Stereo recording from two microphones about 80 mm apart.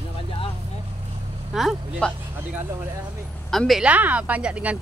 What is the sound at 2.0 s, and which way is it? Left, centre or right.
Speech, centre.